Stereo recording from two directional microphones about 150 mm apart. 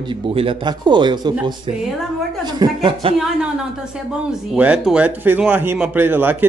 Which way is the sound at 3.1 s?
5° right (ahead or behind).